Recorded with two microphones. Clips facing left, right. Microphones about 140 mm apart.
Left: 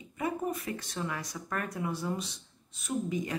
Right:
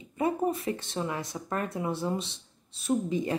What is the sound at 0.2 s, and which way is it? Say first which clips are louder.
A woman's voice: right 5 dB; 30° right (ahead or behind).